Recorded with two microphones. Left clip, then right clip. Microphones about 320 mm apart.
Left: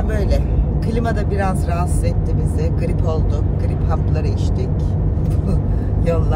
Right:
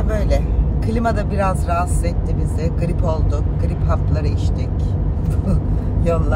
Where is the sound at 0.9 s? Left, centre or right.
Centre.